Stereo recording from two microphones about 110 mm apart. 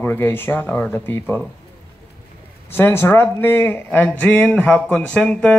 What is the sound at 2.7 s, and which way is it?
Speech, 20° left (ahead or behind).